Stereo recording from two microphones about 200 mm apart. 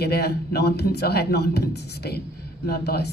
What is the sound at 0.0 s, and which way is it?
A woman's voice, 55° left (ahead or behind).